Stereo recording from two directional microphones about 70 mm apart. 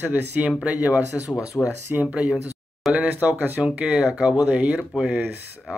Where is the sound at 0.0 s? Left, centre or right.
Right.